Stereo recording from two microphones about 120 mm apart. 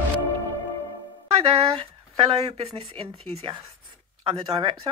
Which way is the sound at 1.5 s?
50° right (ahead or behind).